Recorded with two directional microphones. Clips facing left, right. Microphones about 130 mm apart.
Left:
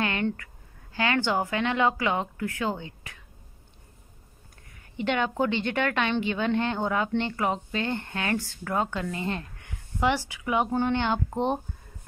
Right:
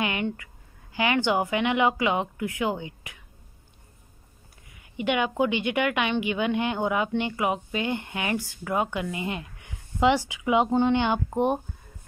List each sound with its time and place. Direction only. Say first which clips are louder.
0.0 s a sound: even; 15° right (ahead or behind)
0.9 s a woman's voice: right 2 dB; 15° right (ahead or behind)
4.6 s a woman's voice: right 1 dB; 10° right (ahead or behind)